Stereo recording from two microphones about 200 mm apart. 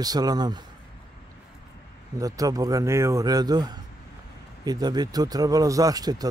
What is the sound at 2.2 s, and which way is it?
A man's voice, 15° right (ahead or behind).